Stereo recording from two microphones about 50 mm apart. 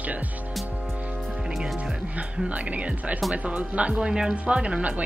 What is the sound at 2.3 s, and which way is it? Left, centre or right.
Speech, right.